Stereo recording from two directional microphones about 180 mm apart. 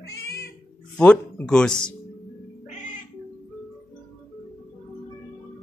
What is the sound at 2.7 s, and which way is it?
Cat, 45° left (ahead or behind).